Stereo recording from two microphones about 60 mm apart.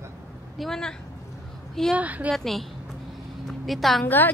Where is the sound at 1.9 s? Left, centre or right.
Right.